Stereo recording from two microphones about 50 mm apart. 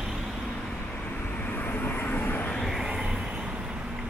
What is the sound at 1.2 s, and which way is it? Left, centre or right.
Vehicle, left.